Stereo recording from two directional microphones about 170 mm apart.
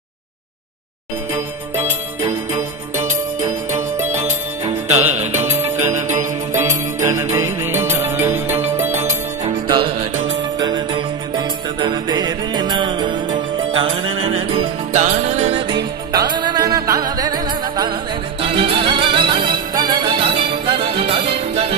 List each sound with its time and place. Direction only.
3.0 s music: 50° right (ahead or behind)
5.0 s music: 10° right (ahead or behind)
5.8 s music: 45° right (ahead or behind)
6.5 s music: 15° right (ahead or behind)
9.7 s music: 30° right (ahead or behind)
14.9 s music: 45° right (ahead or behind)